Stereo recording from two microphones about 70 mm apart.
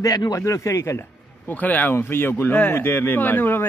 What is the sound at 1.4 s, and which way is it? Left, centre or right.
Speech, left.